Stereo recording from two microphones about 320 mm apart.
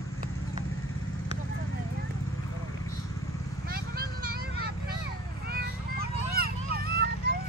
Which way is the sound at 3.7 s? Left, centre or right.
Right.